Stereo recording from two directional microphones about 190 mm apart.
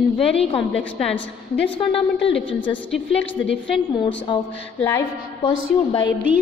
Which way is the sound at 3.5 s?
25° left (ahead or behind).